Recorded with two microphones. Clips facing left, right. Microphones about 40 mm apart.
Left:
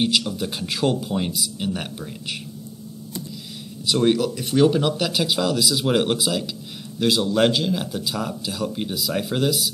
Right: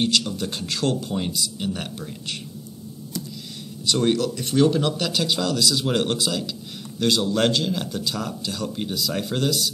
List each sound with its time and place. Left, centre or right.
0.0 s a man's voice: centre
3.8 s a man's voice: centre